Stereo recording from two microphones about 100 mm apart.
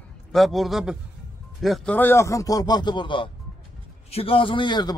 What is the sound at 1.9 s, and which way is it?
Speech, 20° left (ahead or behind).